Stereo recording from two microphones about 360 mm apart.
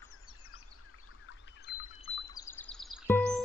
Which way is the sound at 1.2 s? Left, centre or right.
Left.